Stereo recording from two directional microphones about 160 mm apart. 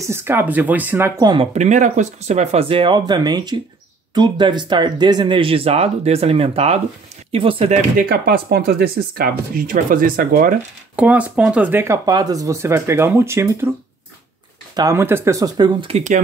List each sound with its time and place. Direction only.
0.0 s speech: 15° right (ahead or behind)
1.2 s speech: 30° right (ahead or behind)
1.5 s speech: 50° right (ahead or behind)
8.0 s speech: 75° right (ahead or behind)
11.0 s speech: 10° right (ahead or behind)
14.8 s speech: 15° right (ahead or behind)
15.9 s speech: 50° right (ahead or behind)